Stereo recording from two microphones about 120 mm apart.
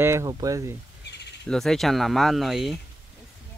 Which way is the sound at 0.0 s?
25° right (ahead or behind).